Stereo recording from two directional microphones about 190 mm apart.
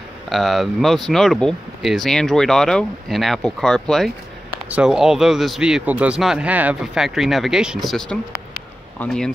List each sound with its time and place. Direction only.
0.3 s speech: centre (ahead or behind)